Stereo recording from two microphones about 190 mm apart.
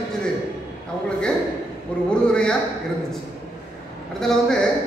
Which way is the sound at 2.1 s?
5° left (ahead or behind).